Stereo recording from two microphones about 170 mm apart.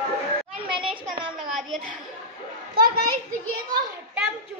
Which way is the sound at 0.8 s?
Centre (ahead or behind).